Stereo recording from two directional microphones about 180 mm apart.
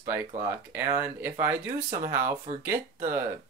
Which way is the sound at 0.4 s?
15° right (ahead or behind).